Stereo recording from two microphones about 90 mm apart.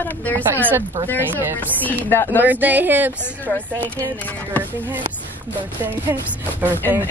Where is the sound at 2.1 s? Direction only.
25° left (ahead or behind).